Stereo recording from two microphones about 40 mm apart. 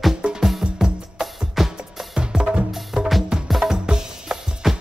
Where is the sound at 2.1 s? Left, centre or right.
Right.